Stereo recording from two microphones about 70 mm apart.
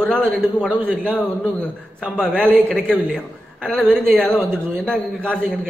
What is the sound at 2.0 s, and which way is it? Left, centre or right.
A man's voice, centre.